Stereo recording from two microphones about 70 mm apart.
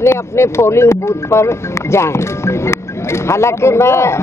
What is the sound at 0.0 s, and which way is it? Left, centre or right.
Speech, left.